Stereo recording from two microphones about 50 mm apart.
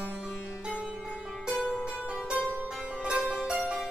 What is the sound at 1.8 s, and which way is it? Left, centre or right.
Music, right.